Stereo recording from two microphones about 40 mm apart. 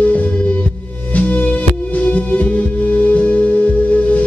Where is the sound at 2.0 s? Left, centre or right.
Left.